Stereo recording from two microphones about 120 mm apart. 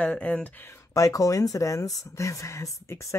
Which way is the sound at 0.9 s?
30° left (ahead or behind).